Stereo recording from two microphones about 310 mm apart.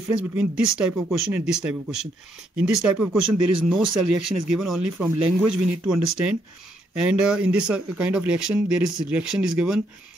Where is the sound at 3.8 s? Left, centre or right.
Right.